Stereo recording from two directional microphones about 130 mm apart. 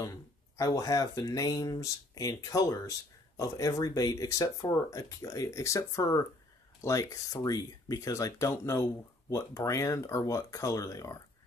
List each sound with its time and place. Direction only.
0.6 s speech: 25° left (ahead or behind)